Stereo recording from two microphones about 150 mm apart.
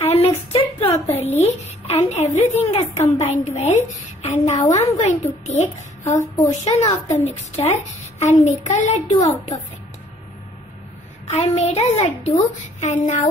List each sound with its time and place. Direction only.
0.0 s a sound: 45° left (ahead or behind)
1.0 s a woman's voice: 45° left (ahead or behind)
11.2 s a woman's voice: 45° left (ahead or behind)